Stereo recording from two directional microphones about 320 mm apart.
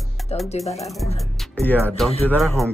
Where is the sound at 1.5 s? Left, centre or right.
Centre.